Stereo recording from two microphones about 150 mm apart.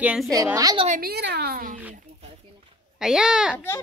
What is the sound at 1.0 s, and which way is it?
Speech, 90° right.